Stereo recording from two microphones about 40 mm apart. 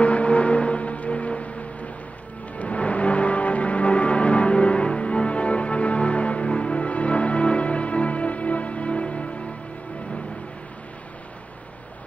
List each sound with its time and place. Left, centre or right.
0.0 s music: left